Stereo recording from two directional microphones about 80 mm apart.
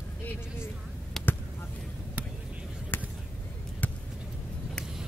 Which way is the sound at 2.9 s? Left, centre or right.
Left.